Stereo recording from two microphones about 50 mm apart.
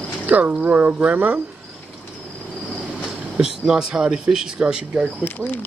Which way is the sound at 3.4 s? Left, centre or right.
Centre.